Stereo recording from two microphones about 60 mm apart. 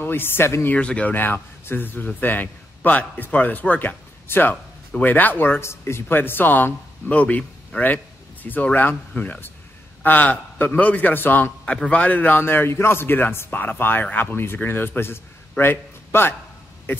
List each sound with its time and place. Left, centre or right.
0.0 s a man's voice: left
0.7 s a man's voice: left
1.1 s a man's voice: left
5.6 s a man's voice: left